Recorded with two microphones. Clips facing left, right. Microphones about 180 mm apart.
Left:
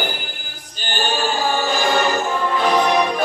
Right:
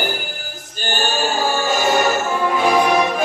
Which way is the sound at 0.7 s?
45° right (ahead or behind).